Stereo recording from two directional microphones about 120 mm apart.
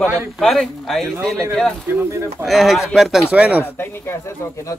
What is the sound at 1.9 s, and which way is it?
Speech, 20° right (ahead or behind).